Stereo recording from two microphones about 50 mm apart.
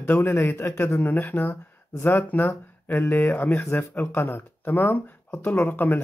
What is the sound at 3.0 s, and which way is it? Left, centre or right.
Speech, left.